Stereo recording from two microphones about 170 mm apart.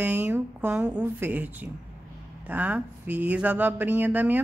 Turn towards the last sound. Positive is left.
turn(degrees=-10)  # may be behind; listen again after turning